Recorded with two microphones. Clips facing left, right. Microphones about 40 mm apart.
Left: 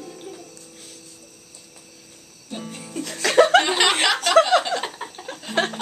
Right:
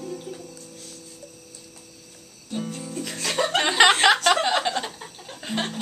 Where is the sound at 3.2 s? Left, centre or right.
Left.